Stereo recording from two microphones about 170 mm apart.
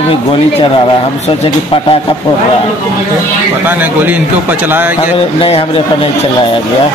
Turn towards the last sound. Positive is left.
turn(degrees=35)  # may be behind; listen again after turning